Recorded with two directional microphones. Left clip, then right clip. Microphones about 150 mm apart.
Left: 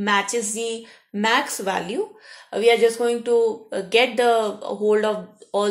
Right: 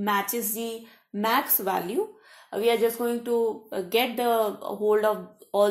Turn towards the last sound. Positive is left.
turn(degrees=-40)  # may be behind; listen again after turning